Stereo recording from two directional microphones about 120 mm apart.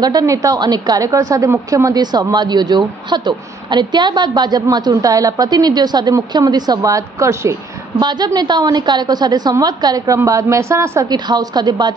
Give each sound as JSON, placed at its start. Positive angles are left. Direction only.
{"t": 0.0, "sound": "a woman's voice", "side_deg": -30}
{"t": 8.0, "sound": "a woman's voice", "side_deg": -35}
{"t": 11.1, "sound": "a woman's voice", "side_deg": -35}